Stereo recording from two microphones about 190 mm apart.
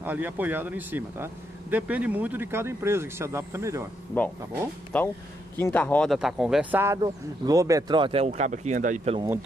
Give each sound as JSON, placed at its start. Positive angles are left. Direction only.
{"t": 0.0, "sound": "speech", "side_deg": -10}
{"t": 4.9, "sound": "speech", "side_deg": 10}